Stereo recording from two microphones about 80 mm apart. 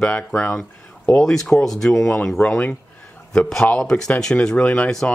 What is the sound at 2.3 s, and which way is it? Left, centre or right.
Speech, centre.